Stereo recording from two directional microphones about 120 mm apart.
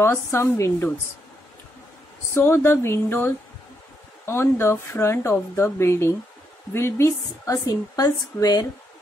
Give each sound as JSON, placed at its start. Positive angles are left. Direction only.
{"t": 0.0, "sound": "a woman's voice", "side_deg": 20}
{"t": 2.3, "sound": "a woman's voice", "side_deg": 20}